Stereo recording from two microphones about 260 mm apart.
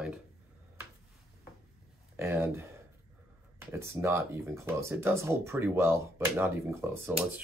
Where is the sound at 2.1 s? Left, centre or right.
Centre.